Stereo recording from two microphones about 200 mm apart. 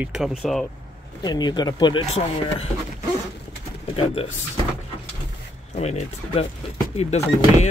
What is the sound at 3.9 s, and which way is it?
Speech, 30° left (ahead or behind).